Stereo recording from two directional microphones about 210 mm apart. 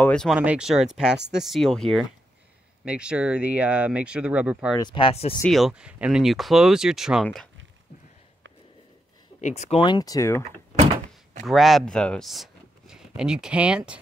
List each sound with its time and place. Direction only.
0.0 s speech: 5° left (ahead or behind)
4.7 s speech: 20° left (ahead or behind)
5.4 s speech: centre (ahead or behind)
9.4 s speech: 35° left (ahead or behind); by 10.4 s 15° left (ahead or behind)
11.4 s speech: centre (ahead or behind)